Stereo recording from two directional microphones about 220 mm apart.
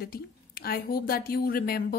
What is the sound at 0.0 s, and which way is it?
A woman's voice, 45° left (ahead or behind).